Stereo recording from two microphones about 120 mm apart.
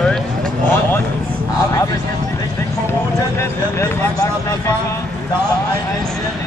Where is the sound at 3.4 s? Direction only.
25° left (ahead or behind).